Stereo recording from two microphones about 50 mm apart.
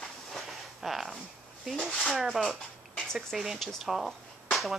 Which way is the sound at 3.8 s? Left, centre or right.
Centre.